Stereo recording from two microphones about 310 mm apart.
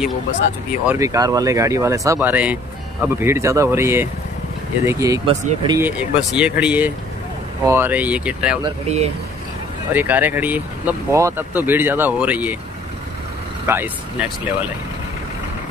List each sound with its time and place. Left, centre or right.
0.8 s speech: centre
5.8 s speech: centre
8.6 s speech: centre
9.9 s speech: centre
13.7 s speech: centre